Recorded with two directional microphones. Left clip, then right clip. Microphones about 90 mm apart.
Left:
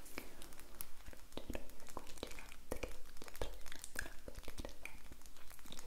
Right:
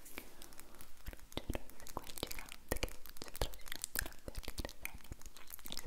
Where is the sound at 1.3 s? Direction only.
35° right (ahead or behind).